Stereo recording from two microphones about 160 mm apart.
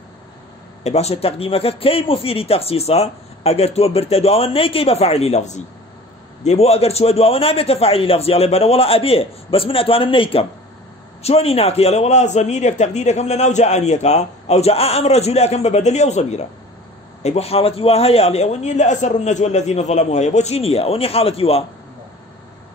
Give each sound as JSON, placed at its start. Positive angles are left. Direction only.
{"t": 0.8, "sound": "a man's voice", "side_deg": 40}